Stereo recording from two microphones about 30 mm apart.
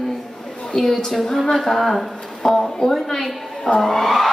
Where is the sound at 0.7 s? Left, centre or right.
Centre.